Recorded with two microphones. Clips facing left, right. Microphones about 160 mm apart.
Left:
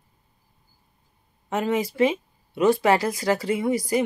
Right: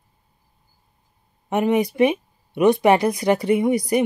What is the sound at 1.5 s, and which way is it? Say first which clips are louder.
A woman's voice: right 5 dB; 20° right (ahead or behind).